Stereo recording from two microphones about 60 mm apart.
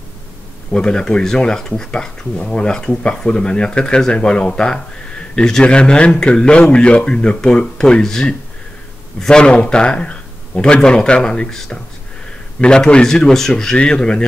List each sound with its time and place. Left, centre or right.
0.7 s speech: centre